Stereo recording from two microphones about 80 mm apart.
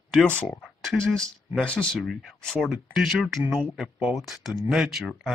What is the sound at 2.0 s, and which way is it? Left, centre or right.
Speech, centre.